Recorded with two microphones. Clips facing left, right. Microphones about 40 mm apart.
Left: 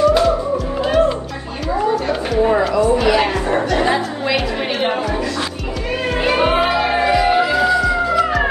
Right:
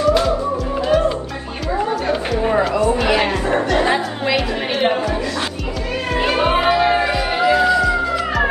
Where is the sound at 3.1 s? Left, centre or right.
Right.